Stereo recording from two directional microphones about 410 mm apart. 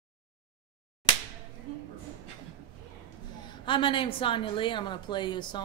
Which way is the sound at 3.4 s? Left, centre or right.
Centre.